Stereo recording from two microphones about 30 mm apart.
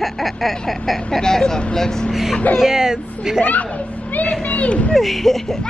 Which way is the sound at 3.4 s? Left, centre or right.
Left.